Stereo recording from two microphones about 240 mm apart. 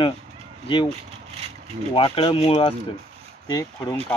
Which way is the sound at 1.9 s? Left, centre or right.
Left.